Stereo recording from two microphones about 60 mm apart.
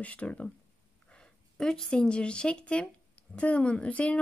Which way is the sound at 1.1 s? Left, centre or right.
Centre.